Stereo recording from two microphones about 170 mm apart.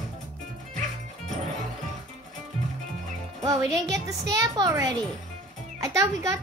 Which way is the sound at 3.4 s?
20° right (ahead or behind).